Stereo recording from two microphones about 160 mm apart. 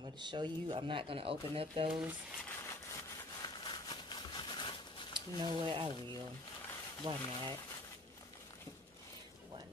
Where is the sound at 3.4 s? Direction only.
25° left (ahead or behind).